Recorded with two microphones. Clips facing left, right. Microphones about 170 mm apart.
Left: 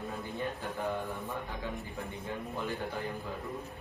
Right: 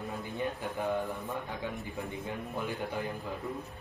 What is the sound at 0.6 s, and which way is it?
Speech, centre (ahead or behind).